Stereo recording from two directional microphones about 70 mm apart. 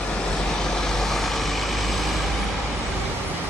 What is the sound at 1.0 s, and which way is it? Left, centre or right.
Vehicle, centre.